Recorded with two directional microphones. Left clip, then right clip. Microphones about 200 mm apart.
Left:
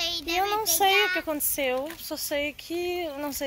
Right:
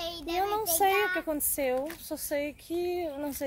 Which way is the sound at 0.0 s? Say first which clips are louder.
Left 7 dB; 20° right (ahead or behind).